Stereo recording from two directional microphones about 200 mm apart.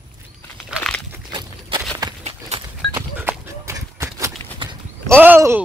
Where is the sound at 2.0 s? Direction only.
20° right (ahead or behind).